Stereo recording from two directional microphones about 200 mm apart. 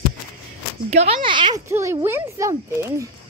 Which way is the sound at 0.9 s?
30° right (ahead or behind).